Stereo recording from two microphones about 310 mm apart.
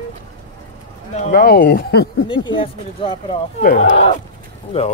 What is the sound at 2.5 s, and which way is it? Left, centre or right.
Speech, centre.